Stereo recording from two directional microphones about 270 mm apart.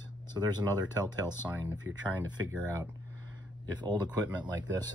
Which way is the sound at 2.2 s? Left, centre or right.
Centre.